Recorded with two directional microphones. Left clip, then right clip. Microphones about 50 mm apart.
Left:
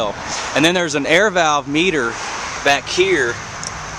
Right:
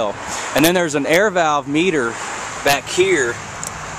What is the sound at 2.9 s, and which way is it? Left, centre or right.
Speech, centre.